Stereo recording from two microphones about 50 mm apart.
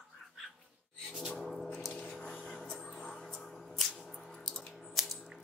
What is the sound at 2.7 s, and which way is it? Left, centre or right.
Music, centre.